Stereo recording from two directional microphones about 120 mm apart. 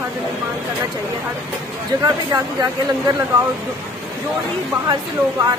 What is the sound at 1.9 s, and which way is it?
Speech, 35° right (ahead or behind).